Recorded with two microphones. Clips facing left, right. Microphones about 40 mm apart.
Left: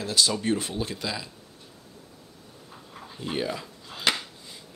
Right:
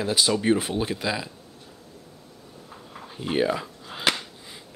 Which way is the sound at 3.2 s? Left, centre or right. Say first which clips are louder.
Right 6 dB; right.